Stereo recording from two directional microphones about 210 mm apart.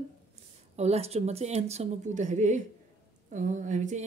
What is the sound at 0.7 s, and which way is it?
Speech, 30° right (ahead or behind).